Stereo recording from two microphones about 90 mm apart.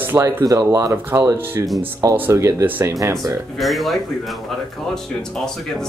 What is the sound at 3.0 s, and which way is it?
Speech, 35° right (ahead or behind).